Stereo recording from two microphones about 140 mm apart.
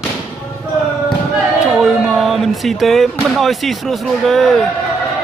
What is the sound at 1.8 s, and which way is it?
Speech, centre (ahead or behind).